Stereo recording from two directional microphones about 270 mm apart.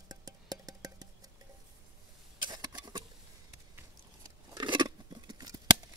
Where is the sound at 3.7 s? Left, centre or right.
Centre.